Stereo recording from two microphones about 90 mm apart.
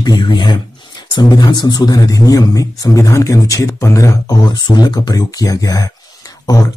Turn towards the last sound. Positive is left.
turn(degrees=40)  # may be behind; listen again after turning